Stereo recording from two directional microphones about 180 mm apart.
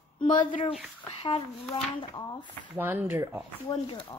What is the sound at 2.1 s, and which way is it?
Speech, 25° left (ahead or behind).